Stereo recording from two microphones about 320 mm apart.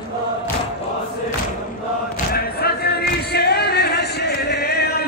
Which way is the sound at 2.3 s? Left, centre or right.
Left.